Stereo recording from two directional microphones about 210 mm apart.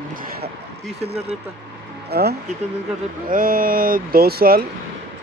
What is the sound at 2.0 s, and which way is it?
Speech, 50° right (ahead or behind).